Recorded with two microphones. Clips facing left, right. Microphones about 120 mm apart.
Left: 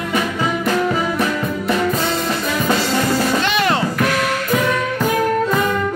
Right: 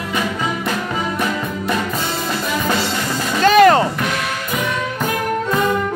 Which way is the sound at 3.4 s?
45° right (ahead or behind).